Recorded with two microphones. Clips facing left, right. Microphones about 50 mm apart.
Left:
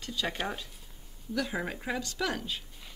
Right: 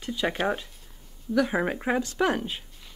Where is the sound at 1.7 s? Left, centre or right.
Right.